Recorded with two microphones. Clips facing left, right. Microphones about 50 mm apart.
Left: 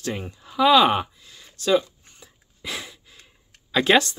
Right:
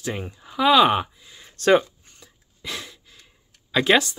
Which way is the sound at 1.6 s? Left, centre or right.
Right.